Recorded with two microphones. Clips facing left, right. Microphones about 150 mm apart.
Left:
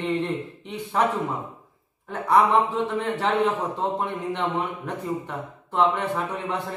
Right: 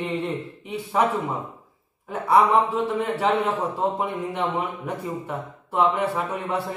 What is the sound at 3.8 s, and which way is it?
A man's voice, 5° right (ahead or behind).